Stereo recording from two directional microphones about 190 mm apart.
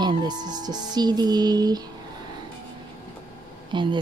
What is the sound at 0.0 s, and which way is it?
Speech, 20° right (ahead or behind).